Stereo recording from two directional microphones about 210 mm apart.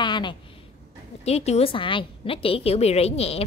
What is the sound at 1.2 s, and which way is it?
A woman's voice, 30° left (ahead or behind).